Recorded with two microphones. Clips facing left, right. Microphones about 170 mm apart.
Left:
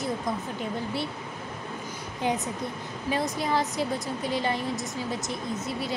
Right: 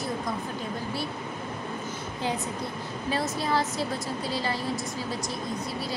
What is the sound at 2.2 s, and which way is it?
A woman's voice, 20° left (ahead or behind).